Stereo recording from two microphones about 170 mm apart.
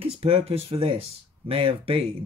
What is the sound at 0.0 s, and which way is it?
Speech, 35° right (ahead or behind).